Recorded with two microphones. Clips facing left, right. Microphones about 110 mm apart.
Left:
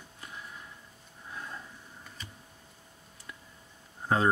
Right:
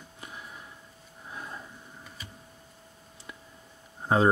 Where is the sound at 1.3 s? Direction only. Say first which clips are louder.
Right 1 dB; 15° right (ahead or behind).